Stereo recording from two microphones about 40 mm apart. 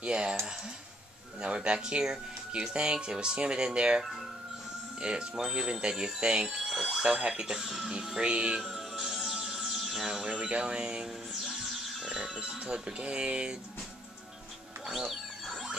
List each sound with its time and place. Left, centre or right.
0.0 s speech: right
1.4 s speech: right
5.0 s speech: right
7.0 s speech: right
8.2 s speech: right
8.6 s music: centre
10.2 s speech: right
14.9 s mechanisms: centre